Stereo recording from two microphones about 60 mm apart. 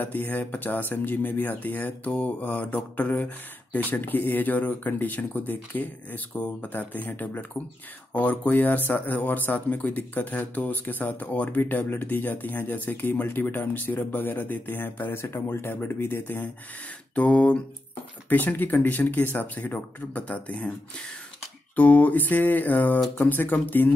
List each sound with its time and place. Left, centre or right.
0.0 s speech: left
17.1 s speech: left
18.3 s speech: left
21.7 s speech: left